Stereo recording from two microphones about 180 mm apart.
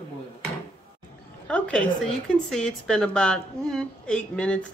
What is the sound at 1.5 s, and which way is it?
A woman's voice, 5° left (ahead or behind).